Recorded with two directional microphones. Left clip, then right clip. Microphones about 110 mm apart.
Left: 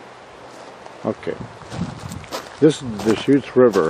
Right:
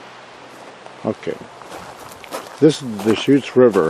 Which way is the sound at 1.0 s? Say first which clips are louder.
Right 1 dB; 20° right (ahead or behind).